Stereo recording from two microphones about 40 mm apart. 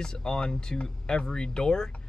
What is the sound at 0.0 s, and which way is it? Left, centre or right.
Speech, centre.